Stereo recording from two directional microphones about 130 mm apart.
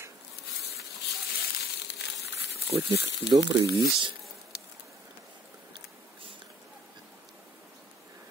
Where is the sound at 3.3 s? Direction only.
25° right (ahead or behind).